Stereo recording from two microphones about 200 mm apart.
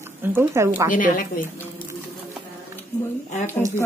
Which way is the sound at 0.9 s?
45° left (ahead or behind).